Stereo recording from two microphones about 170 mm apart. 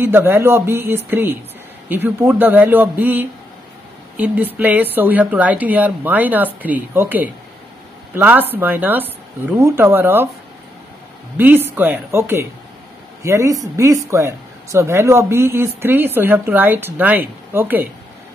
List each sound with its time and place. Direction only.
0.0 s speech: 15° right (ahead or behind)
11.3 s speech: 10° right (ahead or behind)